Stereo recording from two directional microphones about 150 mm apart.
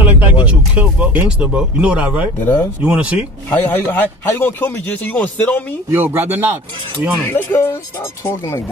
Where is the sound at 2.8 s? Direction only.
10° right (ahead or behind).